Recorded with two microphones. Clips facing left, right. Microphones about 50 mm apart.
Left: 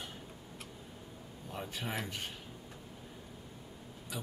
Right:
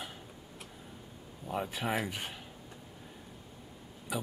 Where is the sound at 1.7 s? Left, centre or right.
Centre.